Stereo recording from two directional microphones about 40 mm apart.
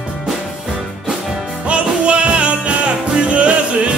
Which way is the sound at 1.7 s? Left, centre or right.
Right.